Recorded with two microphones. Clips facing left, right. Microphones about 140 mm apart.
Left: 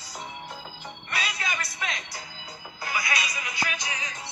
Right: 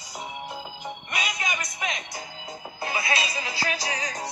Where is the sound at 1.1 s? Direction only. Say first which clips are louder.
Right 1 dB; 15° right (ahead or behind).